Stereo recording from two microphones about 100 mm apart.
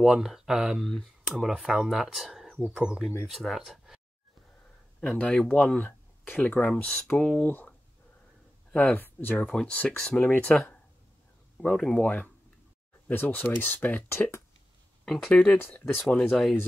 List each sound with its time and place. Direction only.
0.0 s speech: 5° right (ahead or behind)
5.0 s speech: 10° left (ahead or behind)
7.4 s speech: 20° left (ahead or behind)
8.7 s speech: 15° left (ahead or behind)
11.5 s speech: 10° left (ahead or behind)
13.1 s speech: 20° left (ahead or behind)
14.1 s speech: 25° left (ahead or behind)
15.0 s speech: 10° left (ahead or behind)